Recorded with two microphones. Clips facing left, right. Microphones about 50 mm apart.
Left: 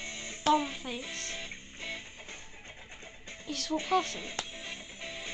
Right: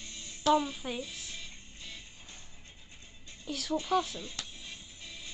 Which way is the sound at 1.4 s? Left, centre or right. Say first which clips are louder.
Left 6 dB; left.